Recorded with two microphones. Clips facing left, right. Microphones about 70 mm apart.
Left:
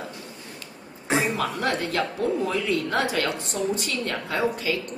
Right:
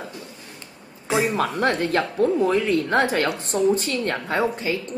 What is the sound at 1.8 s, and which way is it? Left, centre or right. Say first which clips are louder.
A woman's voice: right 5 dB; right.